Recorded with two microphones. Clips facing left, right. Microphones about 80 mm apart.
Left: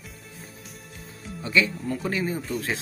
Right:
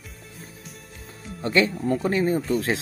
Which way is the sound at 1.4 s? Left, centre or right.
Right.